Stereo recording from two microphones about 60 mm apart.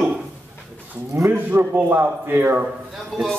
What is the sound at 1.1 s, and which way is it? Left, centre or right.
A man's voice, right.